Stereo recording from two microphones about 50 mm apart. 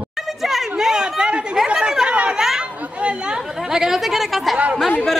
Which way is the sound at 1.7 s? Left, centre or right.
Centre.